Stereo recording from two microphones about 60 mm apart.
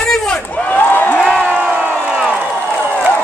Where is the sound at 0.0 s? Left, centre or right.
Centre.